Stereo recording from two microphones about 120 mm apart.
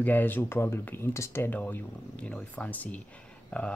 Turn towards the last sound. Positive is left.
turn(degrees=10)  # may be behind; listen again after turning